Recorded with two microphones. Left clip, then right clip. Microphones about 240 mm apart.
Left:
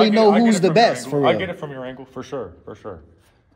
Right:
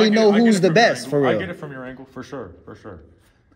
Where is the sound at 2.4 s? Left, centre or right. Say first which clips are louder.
Left 4 dB; centre.